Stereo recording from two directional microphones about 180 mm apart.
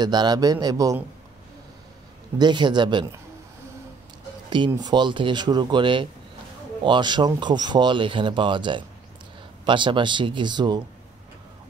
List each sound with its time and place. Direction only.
0.0 s speech: 25° right (ahead or behind)
2.3 s speech: 25° right (ahead or behind)
4.5 s speech: 25° right (ahead or behind)